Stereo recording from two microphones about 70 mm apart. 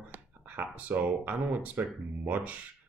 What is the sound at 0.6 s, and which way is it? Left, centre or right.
Speech, right.